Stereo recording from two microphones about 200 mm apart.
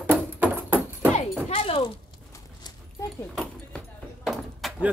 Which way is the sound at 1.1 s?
30° left (ahead or behind).